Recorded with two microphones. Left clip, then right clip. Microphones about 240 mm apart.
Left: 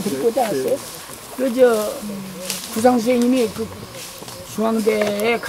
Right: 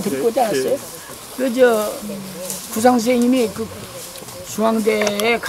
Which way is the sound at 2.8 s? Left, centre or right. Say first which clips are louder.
Right 1 dB; centre.